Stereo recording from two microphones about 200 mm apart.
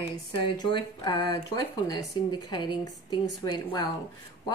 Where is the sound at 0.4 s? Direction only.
20° left (ahead or behind).